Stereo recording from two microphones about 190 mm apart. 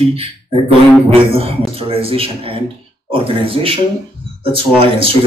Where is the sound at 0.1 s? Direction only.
30° right (ahead or behind).